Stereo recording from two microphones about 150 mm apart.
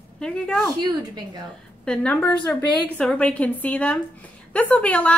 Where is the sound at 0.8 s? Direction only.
25° right (ahead or behind).